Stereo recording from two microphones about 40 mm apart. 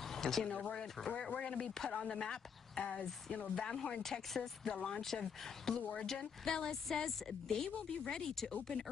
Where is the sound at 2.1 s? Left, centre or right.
Centre.